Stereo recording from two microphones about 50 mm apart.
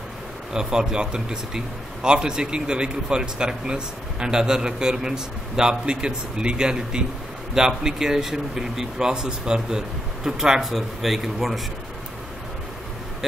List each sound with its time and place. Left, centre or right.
0.5 s a man's voice: centre